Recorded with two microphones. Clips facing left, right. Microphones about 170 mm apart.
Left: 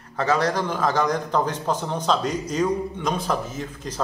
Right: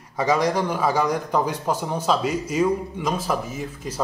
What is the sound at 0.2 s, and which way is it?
A man's voice, 10° right (ahead or behind).